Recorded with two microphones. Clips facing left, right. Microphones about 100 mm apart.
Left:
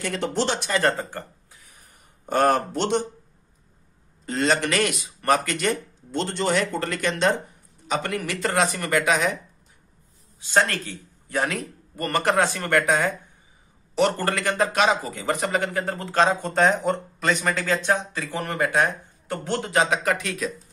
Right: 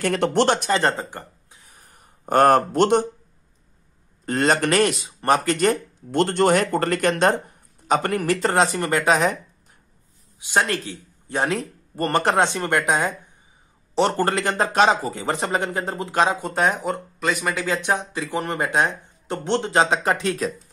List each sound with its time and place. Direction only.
0.0 s speech: 60° right (ahead or behind)
0.7 s speech: 25° right (ahead or behind)
2.2 s speech: 50° right (ahead or behind)
4.3 s speech: 50° right (ahead or behind)
6.1 s speech: 55° right (ahead or behind); by 9.3 s 35° right (ahead or behind)
10.4 s a man's voice: 15° right (ahead or behind)
13.9 s a man's voice: 30° right (ahead or behind)